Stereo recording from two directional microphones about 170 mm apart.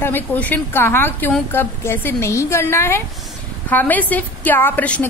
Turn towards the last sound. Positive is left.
turn(degrees=10)  # may be behind; listen again after turning